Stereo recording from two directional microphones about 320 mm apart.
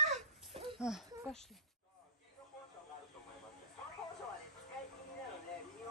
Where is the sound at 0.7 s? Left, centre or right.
Centre.